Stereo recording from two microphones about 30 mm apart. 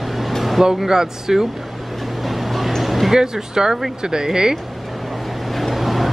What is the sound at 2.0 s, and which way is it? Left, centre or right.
Vehicle, centre.